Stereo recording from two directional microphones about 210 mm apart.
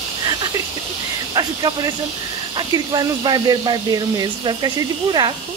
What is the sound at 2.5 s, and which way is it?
Speech, 20° right (ahead or behind).